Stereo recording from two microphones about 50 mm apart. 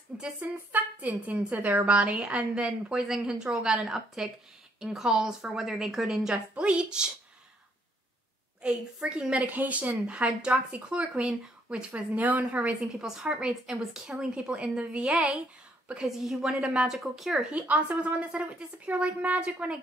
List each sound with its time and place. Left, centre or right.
0.4 s a woman's voice: right
1.9 s speech: right
3.0 s a woman's voice: centre
6.3 s speech: right
8.6 s a woman's voice: centre
12.8 s a woman's voice: centre
13.7 s a woman's voice: centre
14.0 s speech: centre
16.0 s a woman's voice: centre
16.5 s speech: right
16.8 s a woman's voice: centre
17.5 s a woman's voice: right